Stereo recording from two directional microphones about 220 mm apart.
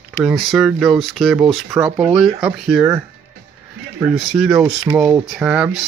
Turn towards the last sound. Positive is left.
turn(degrees=-5)  # may be behind; listen again after turning